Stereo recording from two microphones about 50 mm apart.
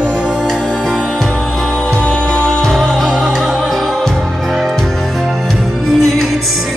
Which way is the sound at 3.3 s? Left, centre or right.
Centre.